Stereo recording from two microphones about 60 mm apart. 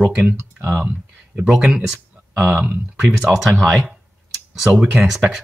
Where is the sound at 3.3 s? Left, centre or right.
Centre.